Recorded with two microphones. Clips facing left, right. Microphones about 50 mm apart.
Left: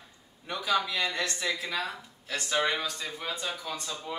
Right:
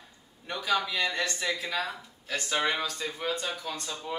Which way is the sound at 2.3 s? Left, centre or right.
Right.